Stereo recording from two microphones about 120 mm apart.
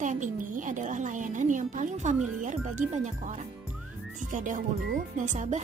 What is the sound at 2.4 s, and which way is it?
Speech, 90° right.